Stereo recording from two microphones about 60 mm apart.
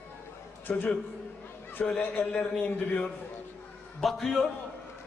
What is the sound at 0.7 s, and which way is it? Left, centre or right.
A man's voice, left.